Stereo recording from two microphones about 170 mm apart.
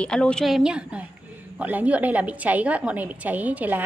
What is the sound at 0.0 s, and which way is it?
A woman's voice, 5° left (ahead or behind).